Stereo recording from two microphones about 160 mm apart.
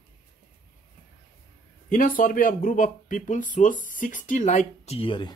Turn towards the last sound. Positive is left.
turn(degrees=30)  # may be behind; listen again after turning